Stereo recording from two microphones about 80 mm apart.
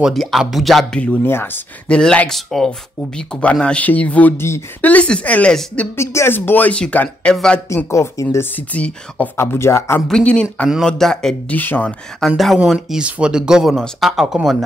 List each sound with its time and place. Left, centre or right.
0.0 s speech: centre
0.9 s speech: centre
1.2 s speech: left
1.9 s speech: centre
4.4 s speech: left
4.8 s speech: centre
5.9 s speech: left; by 7.6 s centre
7.7 s speech: left
8.5 s speech: centre
9.4 s speech: left
10.0 s speech: centre
11.4 s speech: left
12.3 s speech: centre
12.7 s speech: centre